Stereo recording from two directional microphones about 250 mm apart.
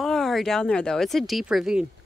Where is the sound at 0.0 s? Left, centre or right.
Centre.